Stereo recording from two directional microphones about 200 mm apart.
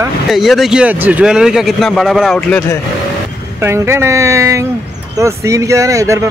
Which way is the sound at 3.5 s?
15° right (ahead or behind).